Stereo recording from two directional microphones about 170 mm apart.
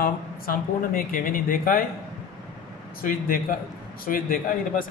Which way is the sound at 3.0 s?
55° left (ahead or behind).